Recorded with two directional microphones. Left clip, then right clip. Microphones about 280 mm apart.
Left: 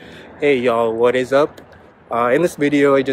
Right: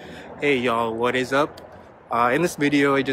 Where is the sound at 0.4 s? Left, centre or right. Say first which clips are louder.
Left 6 dB; centre.